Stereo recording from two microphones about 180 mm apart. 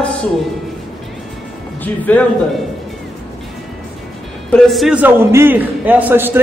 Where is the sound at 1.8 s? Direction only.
10° left (ahead or behind).